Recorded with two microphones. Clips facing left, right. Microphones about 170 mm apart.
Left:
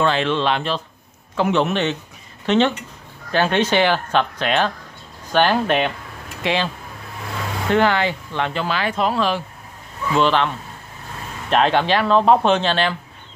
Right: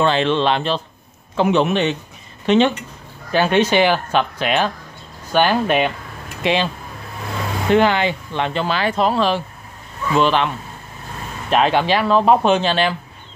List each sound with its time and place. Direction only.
0.0 s speech: 25° right (ahead or behind); by 5.9 s 10° right (ahead or behind)
6.4 s speech: 20° right (ahead or behind)
7.7 s speech: 20° right (ahead or behind)
10.1 s speech: 15° right (ahead or behind)
11.5 s speech: 10° right (ahead or behind)